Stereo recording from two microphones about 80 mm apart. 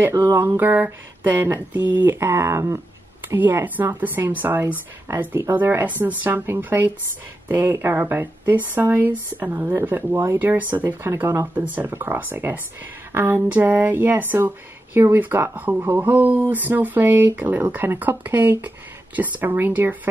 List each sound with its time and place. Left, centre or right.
0.1 s speech: right
10.1 s speech: right